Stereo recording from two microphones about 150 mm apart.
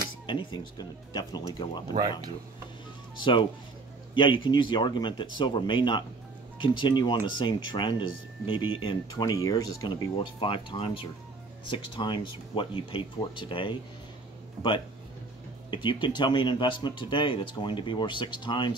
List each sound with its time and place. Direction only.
0.3 s speech: 35° left (ahead or behind)
4.1 s speech: 35° left (ahead or behind)
15.7 s speech: 30° left (ahead or behind)